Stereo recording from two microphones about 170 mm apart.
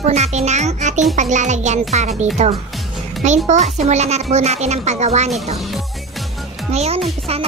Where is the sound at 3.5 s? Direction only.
40° right (ahead or behind).